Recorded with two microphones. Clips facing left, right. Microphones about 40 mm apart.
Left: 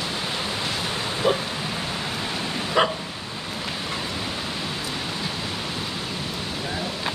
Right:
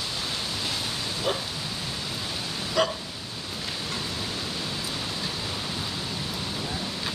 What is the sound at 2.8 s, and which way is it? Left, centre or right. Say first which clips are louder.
Dog: left 4 dB; left.